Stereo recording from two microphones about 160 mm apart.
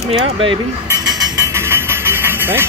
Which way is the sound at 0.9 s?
20° right (ahead or behind).